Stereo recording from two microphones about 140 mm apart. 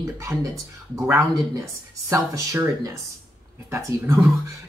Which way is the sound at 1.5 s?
25° right (ahead or behind).